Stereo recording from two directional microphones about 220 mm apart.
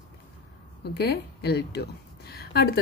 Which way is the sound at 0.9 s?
45° left (ahead or behind).